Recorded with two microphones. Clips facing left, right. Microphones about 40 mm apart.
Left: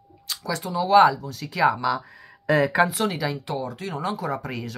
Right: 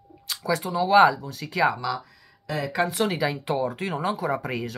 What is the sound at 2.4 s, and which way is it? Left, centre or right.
Speech, left.